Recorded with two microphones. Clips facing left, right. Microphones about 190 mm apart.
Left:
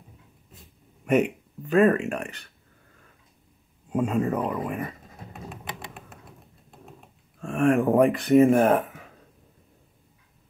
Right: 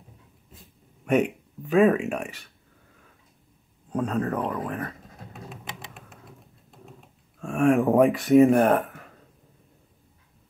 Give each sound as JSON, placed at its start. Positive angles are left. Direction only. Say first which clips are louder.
{"t": 1.0, "sound": "a sound", "louder": "left 1 dB", "side_deg": 0}
{"t": 3.9, "sound": "speech", "louder": "left 2 dB", "side_deg": 0}
{"t": 5.5, "sound": "typing", "louder": "left 2 dB", "side_deg": 55}
{"t": 7.3, "sound": "speech", "louder": "right 1 dB", "side_deg": 0}